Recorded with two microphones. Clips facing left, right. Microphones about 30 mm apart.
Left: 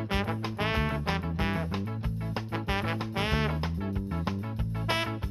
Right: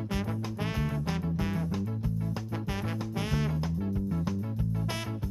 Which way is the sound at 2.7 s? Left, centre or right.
Left.